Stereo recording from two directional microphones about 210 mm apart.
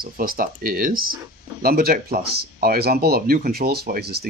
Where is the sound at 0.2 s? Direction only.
45° right (ahead or behind).